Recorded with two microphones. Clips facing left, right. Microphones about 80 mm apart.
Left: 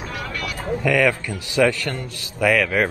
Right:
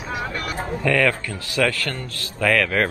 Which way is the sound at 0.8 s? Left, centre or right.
Centre.